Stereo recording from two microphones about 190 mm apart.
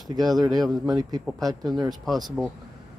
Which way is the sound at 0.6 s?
Centre (ahead or behind).